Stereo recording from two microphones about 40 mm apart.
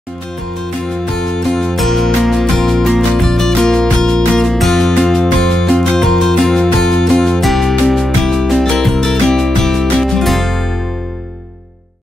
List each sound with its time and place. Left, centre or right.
1.1 s music: centre
4.5 s music: centre